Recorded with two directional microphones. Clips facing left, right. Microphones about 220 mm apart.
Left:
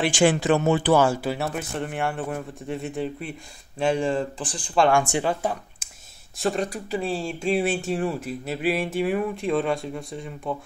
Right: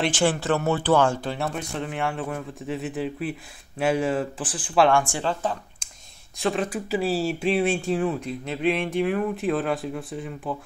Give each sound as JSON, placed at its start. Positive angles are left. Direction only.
{"t": 0.1, "sound": "speech", "side_deg": 15}
{"t": 4.9, "sound": "speech", "side_deg": 15}
{"t": 6.3, "sound": "speech", "side_deg": 0}